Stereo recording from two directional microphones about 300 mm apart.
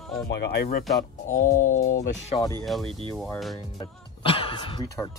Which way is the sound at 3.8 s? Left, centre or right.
Centre.